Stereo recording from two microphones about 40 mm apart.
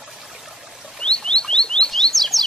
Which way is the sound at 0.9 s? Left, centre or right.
Centre.